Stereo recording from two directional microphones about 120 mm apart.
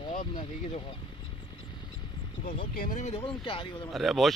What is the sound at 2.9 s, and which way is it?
Speech, 75° left (ahead or behind).